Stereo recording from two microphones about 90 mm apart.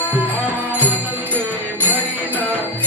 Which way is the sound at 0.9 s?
20° right (ahead or behind).